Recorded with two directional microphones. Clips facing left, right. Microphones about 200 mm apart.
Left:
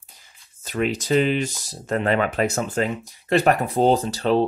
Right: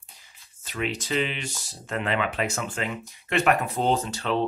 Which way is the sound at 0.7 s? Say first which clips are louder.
Left 7 dB; 45° left (ahead or behind).